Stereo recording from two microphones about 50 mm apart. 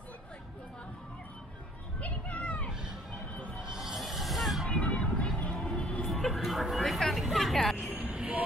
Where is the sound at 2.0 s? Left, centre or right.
Left.